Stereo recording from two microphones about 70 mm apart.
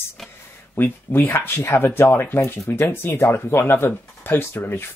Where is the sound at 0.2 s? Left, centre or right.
Centre.